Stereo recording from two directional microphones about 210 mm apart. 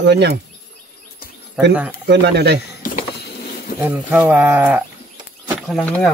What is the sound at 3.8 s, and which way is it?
Speech, 5° right (ahead or behind).